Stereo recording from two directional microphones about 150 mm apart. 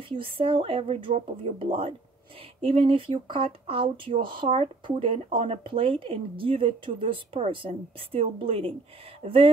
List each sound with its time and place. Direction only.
0.1 s speech: 35° right (ahead or behind)